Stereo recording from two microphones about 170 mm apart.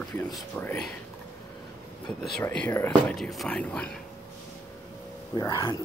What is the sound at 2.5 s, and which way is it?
Speech, 10° left (ahead or behind).